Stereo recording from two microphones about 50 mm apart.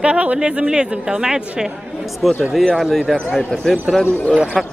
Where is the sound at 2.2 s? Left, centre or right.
Centre.